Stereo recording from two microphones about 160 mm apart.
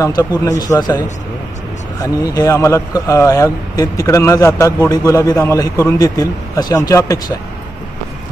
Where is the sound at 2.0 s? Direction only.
20° left (ahead or behind).